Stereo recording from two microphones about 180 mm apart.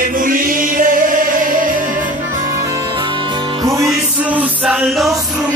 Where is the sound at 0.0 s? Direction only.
50° right (ahead or behind).